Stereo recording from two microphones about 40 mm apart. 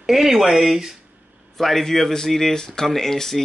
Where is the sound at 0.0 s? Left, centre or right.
Centre.